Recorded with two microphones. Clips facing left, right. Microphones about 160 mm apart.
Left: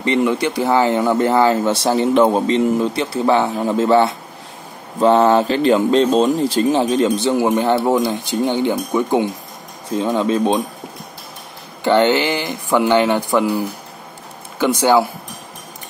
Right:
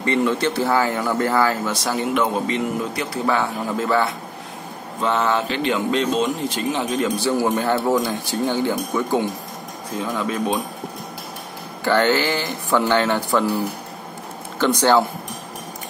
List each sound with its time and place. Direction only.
0.0 s speech: 15° left (ahead or behind)
11.8 s speech: 20° left (ahead or behind)
14.6 s speech: 10° left (ahead or behind)